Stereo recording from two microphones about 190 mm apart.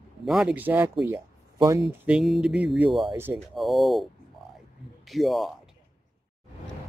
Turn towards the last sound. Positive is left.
turn(degrees=0)  # may be behind; listen again after turning